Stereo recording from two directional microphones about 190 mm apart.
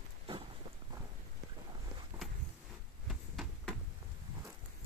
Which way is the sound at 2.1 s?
15° right (ahead or behind).